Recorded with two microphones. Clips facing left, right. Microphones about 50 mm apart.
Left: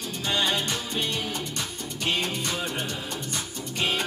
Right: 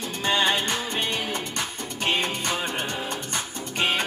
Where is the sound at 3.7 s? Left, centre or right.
Right.